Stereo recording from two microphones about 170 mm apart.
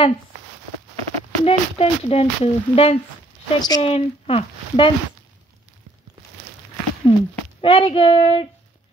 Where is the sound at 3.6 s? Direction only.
25° left (ahead or behind).